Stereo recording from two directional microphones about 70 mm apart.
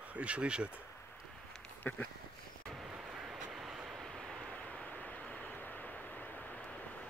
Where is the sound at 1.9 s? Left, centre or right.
Left.